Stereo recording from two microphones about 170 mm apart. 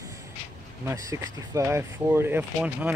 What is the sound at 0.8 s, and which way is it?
Speech, 15° right (ahead or behind).